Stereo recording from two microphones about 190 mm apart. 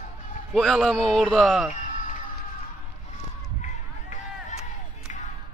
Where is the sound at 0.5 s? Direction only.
Centre (ahead or behind).